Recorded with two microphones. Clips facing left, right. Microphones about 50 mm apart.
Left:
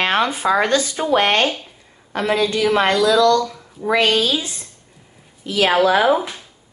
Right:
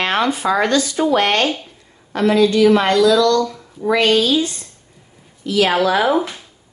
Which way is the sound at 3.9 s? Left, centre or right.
Centre.